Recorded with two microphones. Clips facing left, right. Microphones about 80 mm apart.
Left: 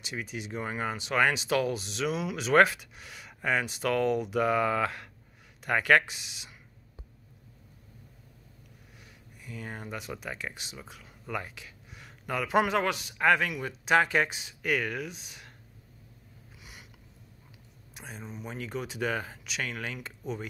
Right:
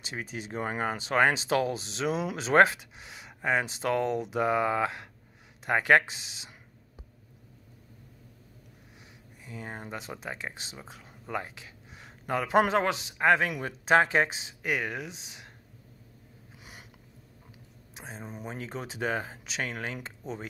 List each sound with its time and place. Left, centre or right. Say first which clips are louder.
0.0 s speech: even; right
9.4 s speech: even; right
13.5 s speech: right 2 dB; right
16.5 s a sound: right 2 dB; right
17.9 s speech: right 1 dB; right
18.2 s speech: even; right